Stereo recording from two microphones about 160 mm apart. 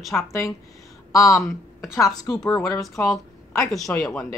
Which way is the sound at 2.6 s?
20° left (ahead or behind).